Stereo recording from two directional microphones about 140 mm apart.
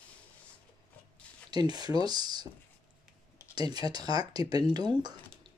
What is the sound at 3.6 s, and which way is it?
Speech, 30° right (ahead or behind).